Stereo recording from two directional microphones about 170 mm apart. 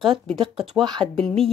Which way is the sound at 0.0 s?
Centre (ahead or behind).